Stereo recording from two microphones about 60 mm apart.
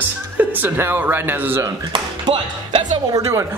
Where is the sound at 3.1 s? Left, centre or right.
Right.